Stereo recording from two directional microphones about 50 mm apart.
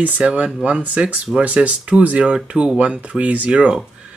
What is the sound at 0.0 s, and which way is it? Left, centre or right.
Speech, right.